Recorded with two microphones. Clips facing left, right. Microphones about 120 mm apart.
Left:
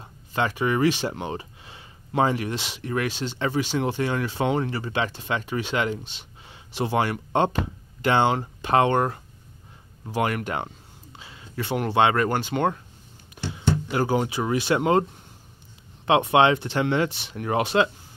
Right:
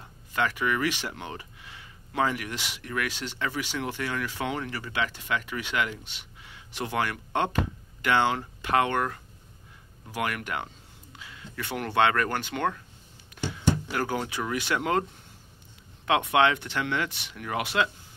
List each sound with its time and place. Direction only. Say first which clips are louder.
0.0 s speech: left 2 dB; 25° left (ahead or behind)
13.8 s speech: left 6 dB; 20° left (ahead or behind)
16.1 s speech: left 4 dB; 25° left (ahead or behind)